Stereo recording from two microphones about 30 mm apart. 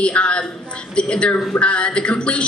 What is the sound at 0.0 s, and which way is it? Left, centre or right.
A woman's voice, left.